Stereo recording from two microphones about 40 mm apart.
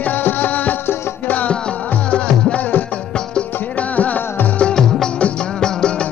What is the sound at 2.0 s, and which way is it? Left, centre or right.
Music, left.